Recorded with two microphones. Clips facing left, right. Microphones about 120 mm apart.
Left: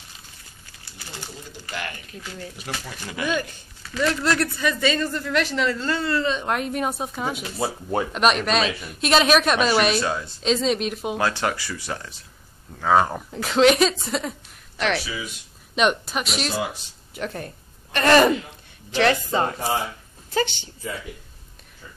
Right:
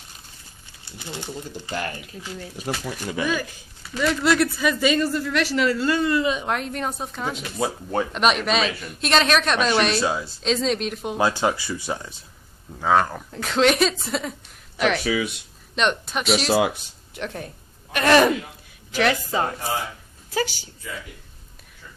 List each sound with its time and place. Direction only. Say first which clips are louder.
0.9 s speech: right 6 dB; 20° right (ahead or behind)
2.8 s speech: right 4 dB; 20° right (ahead or behind)
4.0 s speech: right 2 dB; 5° right (ahead or behind)
6.4 s speech: left 2 dB; 5° left (ahead or behind)
10.0 s speech: right 2 dB; 10° right (ahead or behind)
10.4 s speech: left 2 dB; centre (ahead or behind)
11.1 s speech: right 5 dB; 15° right (ahead or behind)
12.9 s speech: left 1 dB; 15° left (ahead or behind)
13.3 s speech: left 3 dB; centre (ahead or behind)
15.0 s speech: right 9 dB; 75° right (ahead or behind)
15.7 s speech: left 2 dB; 5° left (ahead or behind)
16.4 s speech: right 7 dB; 80° right
17.1 s speech: left 1 dB; centre (ahead or behind)